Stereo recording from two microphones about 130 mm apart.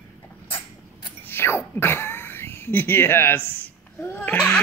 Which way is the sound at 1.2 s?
15° left (ahead or behind).